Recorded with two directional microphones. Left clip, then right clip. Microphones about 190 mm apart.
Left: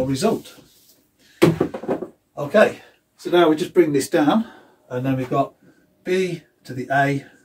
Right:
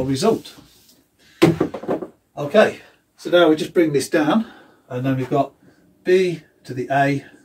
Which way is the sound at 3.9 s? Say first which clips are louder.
Even; 25° left (ahead or behind).